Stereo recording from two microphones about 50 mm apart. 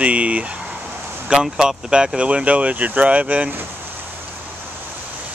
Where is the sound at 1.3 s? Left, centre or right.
Centre.